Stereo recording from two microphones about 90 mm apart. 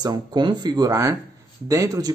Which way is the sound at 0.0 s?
50° right (ahead or behind).